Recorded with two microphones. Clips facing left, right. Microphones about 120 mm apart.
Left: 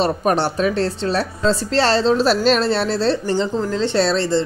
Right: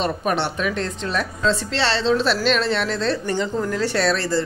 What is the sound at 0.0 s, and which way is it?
Speech, 40° left (ahead or behind).